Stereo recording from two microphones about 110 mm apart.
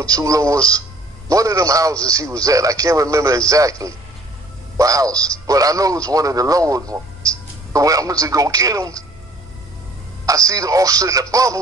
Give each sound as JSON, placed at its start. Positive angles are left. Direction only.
{"t": 0.0, "sound": "speech", "side_deg": -30}
{"t": 10.2, "sound": "speech", "side_deg": -30}